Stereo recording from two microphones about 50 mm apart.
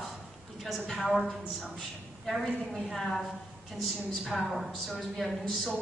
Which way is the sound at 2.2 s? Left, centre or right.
Centre.